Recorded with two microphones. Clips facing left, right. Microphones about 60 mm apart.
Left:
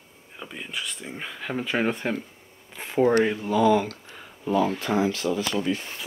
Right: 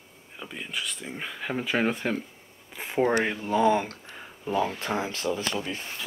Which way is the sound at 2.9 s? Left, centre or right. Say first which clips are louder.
Left 3 dB; centre.